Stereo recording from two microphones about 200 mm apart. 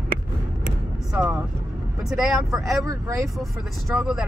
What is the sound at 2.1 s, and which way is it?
Speech, centre (ahead or behind).